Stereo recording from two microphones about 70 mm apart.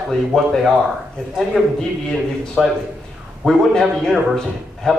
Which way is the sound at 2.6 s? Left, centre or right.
Centre.